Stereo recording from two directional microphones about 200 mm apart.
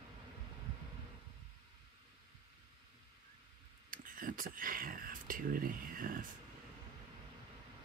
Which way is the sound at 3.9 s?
45° right (ahead or behind).